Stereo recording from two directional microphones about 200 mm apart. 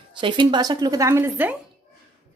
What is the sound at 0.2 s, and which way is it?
A woman's voice, 25° right (ahead or behind).